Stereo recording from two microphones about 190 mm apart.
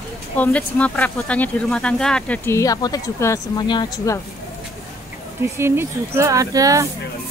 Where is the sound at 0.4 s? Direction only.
5° left (ahead or behind).